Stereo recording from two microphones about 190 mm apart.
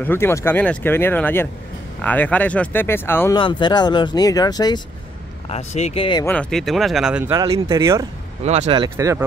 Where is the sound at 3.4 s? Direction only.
25° left (ahead or behind).